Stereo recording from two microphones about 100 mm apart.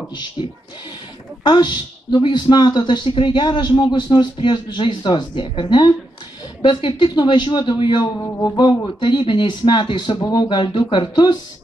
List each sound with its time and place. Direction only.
0.4 s speech: 50° left (ahead or behind)
8.2 s a sound: 25° left (ahead or behind)
9.0 s speech: 55° left (ahead or behind)